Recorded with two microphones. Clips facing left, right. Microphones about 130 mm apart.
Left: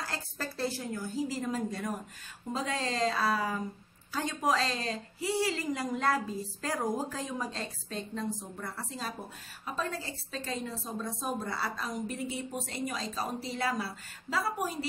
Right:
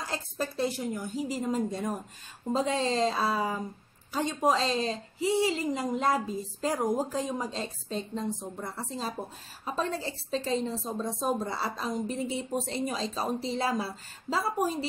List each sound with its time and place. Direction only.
0.0 s a woman's voice: 20° right (ahead or behind)